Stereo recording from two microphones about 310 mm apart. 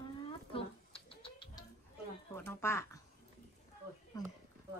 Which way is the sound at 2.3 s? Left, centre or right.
Centre.